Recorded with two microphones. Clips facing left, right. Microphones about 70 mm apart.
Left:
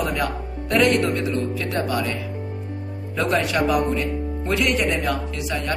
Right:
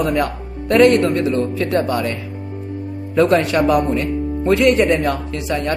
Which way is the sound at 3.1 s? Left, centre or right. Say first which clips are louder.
Right 7 dB; right.